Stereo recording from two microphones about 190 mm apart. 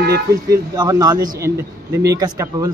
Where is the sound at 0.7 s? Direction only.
20° right (ahead or behind).